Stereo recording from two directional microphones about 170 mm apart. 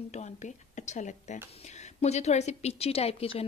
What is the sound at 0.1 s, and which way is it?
A woman's voice, 45° left (ahead or behind).